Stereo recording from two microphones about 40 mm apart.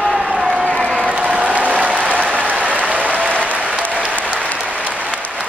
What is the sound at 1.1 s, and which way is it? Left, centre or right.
Applause, right.